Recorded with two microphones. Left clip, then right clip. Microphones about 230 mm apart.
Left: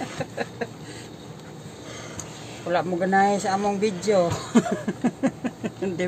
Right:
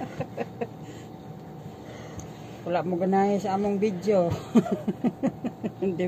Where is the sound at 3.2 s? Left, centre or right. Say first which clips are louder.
Left 6 dB; centre.